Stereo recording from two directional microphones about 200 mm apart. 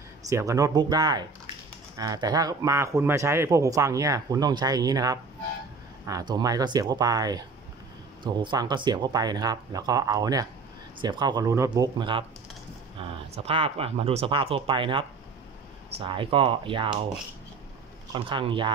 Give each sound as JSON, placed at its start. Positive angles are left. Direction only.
{"t": 0.3, "sound": "speech", "side_deg": -15}
{"t": 18.1, "sound": "speech", "side_deg": -25}